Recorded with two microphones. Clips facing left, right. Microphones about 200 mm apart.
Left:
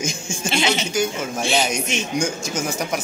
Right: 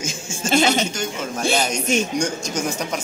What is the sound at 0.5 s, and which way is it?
Speech, 45° right (ahead or behind).